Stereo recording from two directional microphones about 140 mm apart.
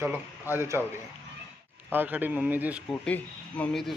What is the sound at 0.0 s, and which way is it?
Speech, 15° right (ahead or behind).